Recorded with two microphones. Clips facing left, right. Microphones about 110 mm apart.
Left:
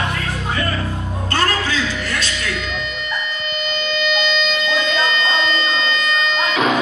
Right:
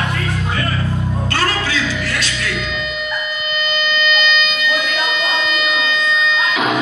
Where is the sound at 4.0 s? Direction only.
Centre (ahead or behind).